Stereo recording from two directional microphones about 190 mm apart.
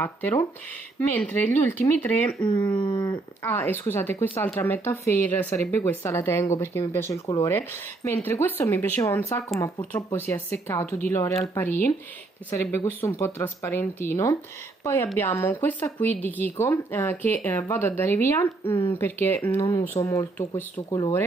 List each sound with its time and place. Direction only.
0.0 s speech: 15° left (ahead or behind)
2.8 s speech: 25° left (ahead or behind)
3.5 s speech: 10° left (ahead or behind)